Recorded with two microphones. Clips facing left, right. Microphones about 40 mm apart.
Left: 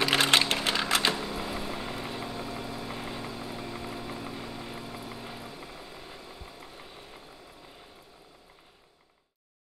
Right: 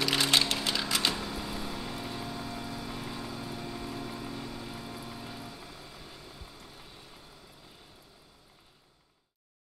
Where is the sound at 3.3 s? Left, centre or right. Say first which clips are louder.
Left 1 dB; centre.